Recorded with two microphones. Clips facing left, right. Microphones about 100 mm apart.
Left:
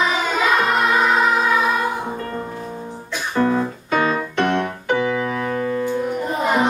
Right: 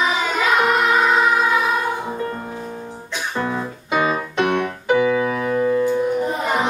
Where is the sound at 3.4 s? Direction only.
10° right (ahead or behind).